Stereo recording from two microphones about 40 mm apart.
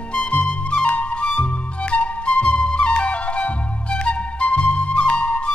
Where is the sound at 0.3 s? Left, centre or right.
Left.